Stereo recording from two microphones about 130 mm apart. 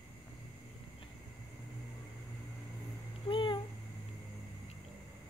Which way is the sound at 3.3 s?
40° left (ahead or behind).